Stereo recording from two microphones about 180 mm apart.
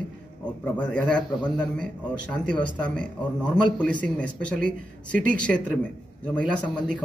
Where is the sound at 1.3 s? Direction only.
25° left (ahead or behind).